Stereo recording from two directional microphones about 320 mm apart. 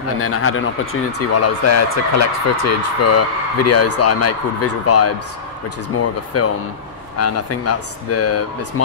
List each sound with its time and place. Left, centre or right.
0.2 s speech: left